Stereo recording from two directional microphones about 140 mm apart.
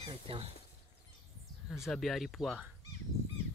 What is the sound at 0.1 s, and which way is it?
Speech, 40° right (ahead or behind).